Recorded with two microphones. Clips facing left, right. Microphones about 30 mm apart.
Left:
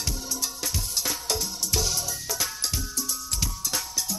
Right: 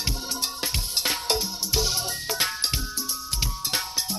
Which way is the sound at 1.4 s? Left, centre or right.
Right.